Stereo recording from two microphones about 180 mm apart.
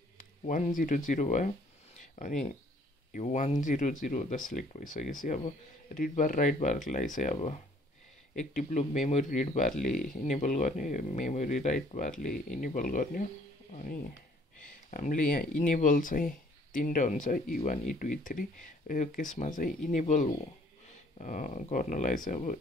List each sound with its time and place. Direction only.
0.7 s speech: 45° left (ahead or behind)